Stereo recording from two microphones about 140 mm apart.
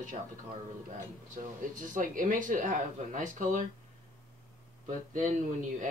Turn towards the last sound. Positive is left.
turn(degrees=-65)  # may be behind; listen again after turning